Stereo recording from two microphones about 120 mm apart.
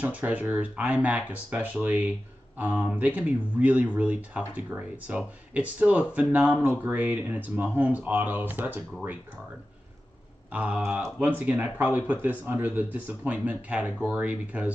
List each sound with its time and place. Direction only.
0.0 s speech: 10° right (ahead or behind)
10.5 s speech: 10° right (ahead or behind)